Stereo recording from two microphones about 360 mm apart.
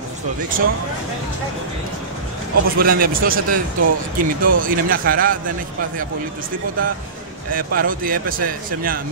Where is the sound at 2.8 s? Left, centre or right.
Right.